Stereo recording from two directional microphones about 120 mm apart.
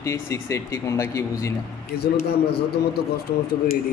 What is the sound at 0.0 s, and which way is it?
A man's voice, 25° left (ahead or behind).